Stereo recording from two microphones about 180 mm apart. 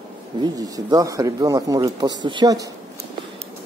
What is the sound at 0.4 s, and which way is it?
Speech, 20° right (ahead or behind).